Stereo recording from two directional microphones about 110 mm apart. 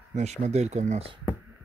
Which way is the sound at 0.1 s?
90° right.